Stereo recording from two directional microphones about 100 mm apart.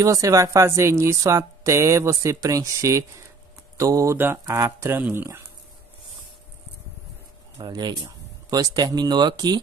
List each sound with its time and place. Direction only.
0.0 s speech: 35° right (ahead or behind)
7.6 s speech: 45° right (ahead or behind)